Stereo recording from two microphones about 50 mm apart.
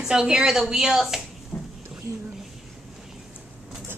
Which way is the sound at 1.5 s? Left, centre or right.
Left.